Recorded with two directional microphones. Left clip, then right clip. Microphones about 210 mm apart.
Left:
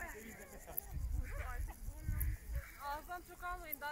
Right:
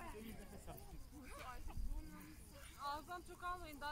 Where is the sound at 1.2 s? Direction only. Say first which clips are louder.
Left 4 dB; 55° right (ahead or behind).